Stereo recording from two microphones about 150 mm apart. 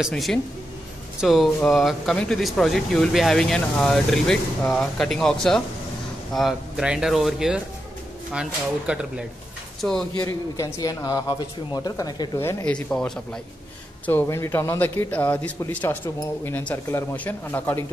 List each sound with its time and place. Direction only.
0.0 s speech: centre (ahead or behind)
10.1 s a man's voice: 25° left (ahead or behind)
12.7 s speech: 5° left (ahead or behind)
14.0 s a man's voice: 15° left (ahead or behind)